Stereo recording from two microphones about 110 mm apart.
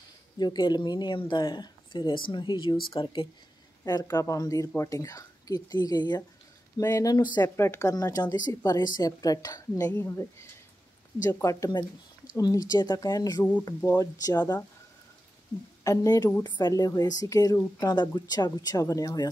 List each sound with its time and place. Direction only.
0.4 s speech: 40° left (ahead or behind)
3.8 s speech: 35° left (ahead or behind)
7.5 s speech: 25° left (ahead or behind)
7.9 s speech: 35° left (ahead or behind)
11.2 s speech: 30° left (ahead or behind)
13.4 s speech: 15° left (ahead or behind)
13.7 s speech: 30° left (ahead or behind)
15.8 s speech: 30° left (ahead or behind)